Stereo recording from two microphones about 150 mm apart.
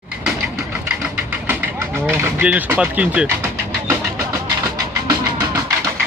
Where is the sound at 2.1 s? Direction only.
15° right (ahead or behind).